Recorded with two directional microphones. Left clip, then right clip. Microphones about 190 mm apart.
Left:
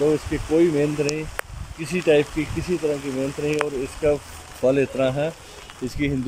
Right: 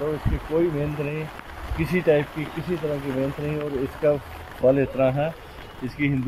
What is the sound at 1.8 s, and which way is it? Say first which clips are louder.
Speech: left 2 dB; 10° left (ahead or behind).